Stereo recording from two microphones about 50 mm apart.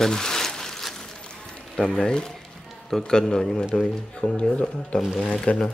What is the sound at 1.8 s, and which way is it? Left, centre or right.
A man's voice, centre.